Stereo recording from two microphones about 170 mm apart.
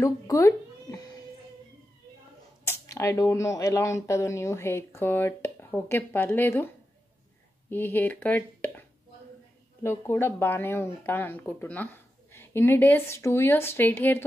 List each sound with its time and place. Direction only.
0.0 s a sound: 20° left (ahead or behind)
2.6 s speech: 15° left (ahead or behind)
7.7 s speech: 10° left (ahead or behind)
9.8 s speech: 15° left (ahead or behind)